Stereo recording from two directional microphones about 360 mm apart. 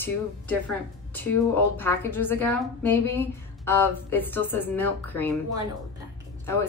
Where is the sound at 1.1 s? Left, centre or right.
Centre.